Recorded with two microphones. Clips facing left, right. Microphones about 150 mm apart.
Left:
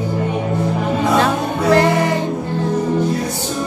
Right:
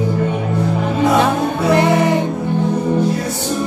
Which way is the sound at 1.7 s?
20° right (ahead or behind).